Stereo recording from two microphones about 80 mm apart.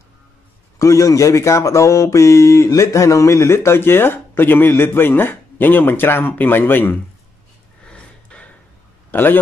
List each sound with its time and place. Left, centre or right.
0.7 s speech: left
7.8 s a sound: centre
9.1 s a man's voice: left